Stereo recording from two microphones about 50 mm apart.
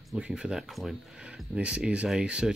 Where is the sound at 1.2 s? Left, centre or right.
Right.